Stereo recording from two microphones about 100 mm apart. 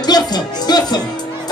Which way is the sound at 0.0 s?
45° left (ahead or behind).